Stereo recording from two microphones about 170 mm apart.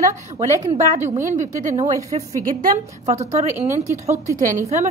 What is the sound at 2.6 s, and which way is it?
A woman's voice, 40° right (ahead or behind).